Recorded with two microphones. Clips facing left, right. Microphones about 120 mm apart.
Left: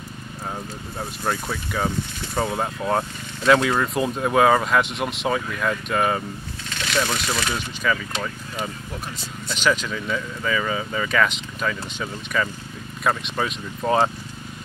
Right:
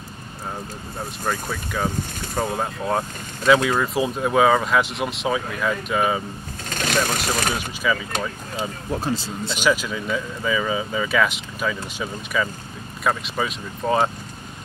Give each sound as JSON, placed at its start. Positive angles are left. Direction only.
{"t": 1.5, "sound": "speech", "side_deg": 0}
{"t": 6.7, "sound": "speech", "side_deg": -45}
{"t": 7.5, "sound": "speech", "side_deg": -5}
{"t": 8.5, "sound": "speech", "side_deg": -30}
{"t": 9.5, "sound": "speech", "side_deg": -5}